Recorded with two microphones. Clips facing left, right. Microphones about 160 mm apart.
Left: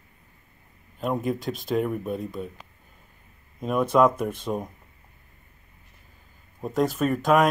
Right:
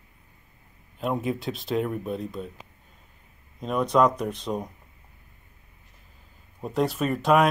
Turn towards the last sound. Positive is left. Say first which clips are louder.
# left 1 dB
turn(degrees=0)  # may be behind; listen again after turning